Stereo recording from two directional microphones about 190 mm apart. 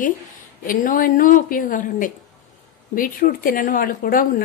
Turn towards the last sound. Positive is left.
turn(degrees=50)  # may be behind; listen again after turning